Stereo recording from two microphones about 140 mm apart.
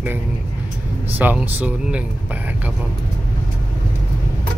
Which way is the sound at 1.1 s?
15° right (ahead or behind).